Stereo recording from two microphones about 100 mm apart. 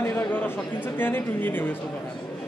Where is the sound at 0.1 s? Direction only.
15° left (ahead or behind).